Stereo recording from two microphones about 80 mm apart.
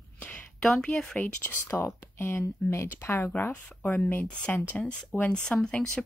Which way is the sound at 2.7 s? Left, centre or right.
Left.